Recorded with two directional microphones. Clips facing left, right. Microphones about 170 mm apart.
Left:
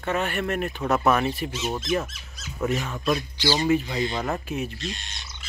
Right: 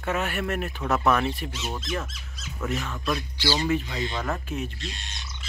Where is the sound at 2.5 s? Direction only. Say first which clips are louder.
Left 4 dB; 30° left (ahead or behind).